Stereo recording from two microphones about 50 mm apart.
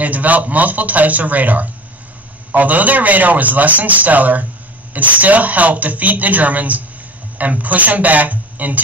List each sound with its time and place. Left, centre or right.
0.0 s a man's voice: right